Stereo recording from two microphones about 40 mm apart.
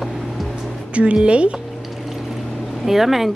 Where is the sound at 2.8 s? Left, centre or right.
Centre.